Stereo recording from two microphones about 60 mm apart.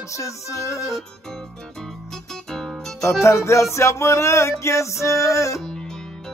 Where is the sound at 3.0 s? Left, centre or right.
Left.